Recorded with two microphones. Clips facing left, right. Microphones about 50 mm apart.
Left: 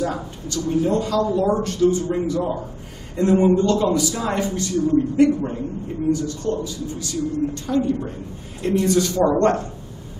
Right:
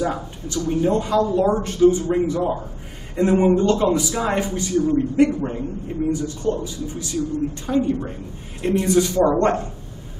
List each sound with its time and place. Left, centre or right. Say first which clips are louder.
0.0 s a man's voice: right 1 dB; centre